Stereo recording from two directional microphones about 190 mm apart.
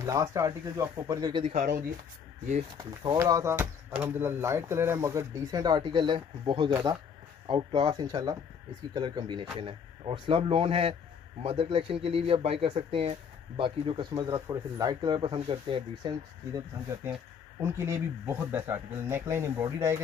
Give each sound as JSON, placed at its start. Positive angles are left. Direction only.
{"t": 0.0, "sound": "speech", "side_deg": -15}
{"t": 1.4, "sound": "speech", "side_deg": -40}
{"t": 2.8, "sound": "speech", "side_deg": -20}